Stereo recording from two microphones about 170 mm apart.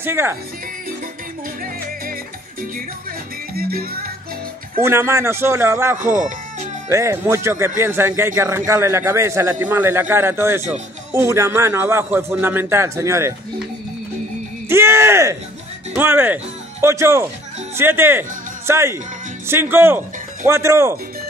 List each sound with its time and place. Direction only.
0.0 s speech: 15° right (ahead or behind)
3.5 s music: 65° right (ahead or behind)
4.8 s speech: 15° right (ahead or behind)
14.7 s speech: 15° right (ahead or behind)